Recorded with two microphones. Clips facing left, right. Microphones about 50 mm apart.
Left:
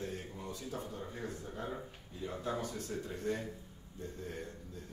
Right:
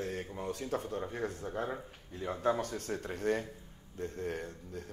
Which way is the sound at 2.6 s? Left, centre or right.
Right.